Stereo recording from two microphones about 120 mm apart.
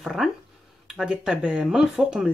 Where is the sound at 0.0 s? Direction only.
Centre (ahead or behind).